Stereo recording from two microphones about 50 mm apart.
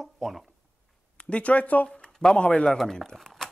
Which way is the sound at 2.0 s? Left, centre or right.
Centre.